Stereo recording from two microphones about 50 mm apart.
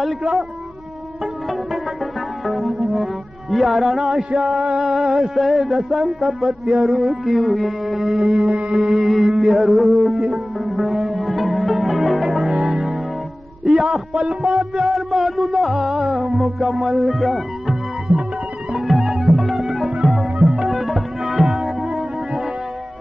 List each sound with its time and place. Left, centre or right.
2.4 s music: centre
4.6 s speech: centre
6.2 s music: centre
8.5 s music: right
8.7 s music: centre
13.7 s a man's voice: centre
14.6 s music: centre
20.1 s tabla: centre